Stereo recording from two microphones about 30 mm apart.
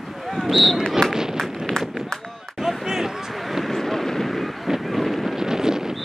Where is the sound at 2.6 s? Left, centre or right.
Centre.